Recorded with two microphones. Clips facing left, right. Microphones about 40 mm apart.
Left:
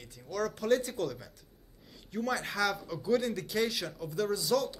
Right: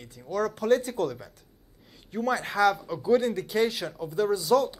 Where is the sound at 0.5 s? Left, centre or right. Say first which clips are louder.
Right 5 dB; right.